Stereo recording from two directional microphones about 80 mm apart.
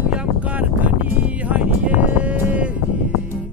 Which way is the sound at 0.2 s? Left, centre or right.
Centre.